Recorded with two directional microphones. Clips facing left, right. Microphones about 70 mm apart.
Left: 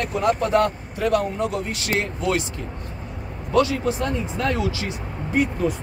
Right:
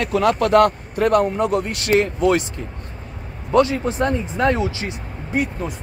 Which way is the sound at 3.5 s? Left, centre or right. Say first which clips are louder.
Right 3 dB; right.